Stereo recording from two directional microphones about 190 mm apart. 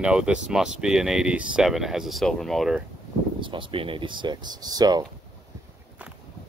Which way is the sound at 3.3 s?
25° right (ahead or behind).